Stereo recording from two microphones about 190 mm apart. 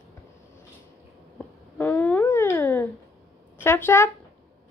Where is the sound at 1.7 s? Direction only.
10° left (ahead or behind).